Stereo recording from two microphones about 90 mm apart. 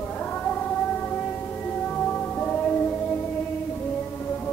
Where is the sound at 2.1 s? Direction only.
15° left (ahead or behind).